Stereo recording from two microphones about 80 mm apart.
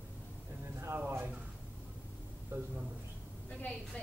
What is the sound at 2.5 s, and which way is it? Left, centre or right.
Speech, right.